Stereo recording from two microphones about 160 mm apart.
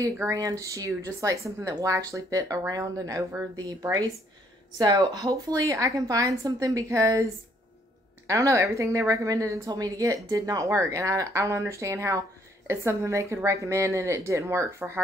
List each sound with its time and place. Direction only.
0.0 s speech: 20° right (ahead or behind)
8.3 s speech: 20° right (ahead or behind)